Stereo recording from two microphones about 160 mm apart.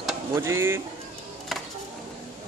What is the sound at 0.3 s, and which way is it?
Speech, 15° right (ahead or behind).